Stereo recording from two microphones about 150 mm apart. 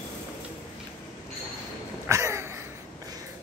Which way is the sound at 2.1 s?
20° right (ahead or behind).